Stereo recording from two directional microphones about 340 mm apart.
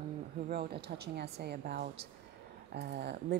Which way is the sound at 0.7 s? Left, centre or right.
Right.